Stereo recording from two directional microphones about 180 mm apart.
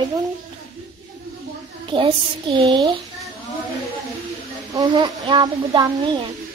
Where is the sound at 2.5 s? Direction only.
25° right (ahead or behind).